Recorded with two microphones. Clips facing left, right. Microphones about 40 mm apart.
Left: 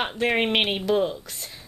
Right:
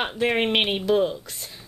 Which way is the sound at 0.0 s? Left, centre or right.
Centre.